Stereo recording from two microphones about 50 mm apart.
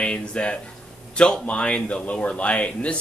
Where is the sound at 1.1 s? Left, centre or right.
Centre.